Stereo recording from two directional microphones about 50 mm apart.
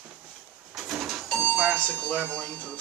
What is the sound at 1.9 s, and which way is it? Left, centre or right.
Speech, left.